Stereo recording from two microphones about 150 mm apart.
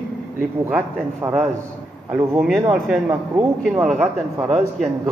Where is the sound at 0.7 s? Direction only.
10° right (ahead or behind).